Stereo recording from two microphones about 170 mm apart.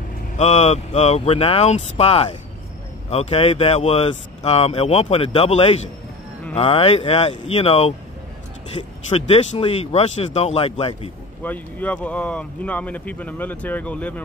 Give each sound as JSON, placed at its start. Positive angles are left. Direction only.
{"t": 0.4, "sound": "speech", "side_deg": 40}
{"t": 9.1, "sound": "speech", "side_deg": 35}
{"t": 11.4, "sound": "speech", "side_deg": 10}